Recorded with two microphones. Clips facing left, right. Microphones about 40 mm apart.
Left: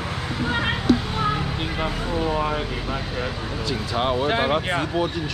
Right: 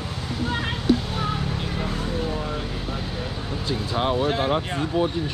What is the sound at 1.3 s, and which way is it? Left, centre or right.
Vehicle, left.